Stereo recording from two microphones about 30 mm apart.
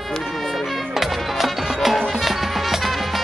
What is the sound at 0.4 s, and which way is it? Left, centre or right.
Music, centre.